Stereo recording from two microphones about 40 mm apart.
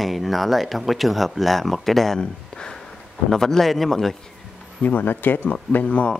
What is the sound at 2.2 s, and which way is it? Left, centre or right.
Speech, left.